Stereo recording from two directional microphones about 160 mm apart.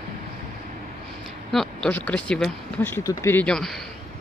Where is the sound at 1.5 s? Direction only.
5° left (ahead or behind).